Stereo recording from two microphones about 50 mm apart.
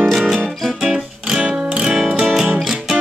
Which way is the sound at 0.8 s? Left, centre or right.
Centre.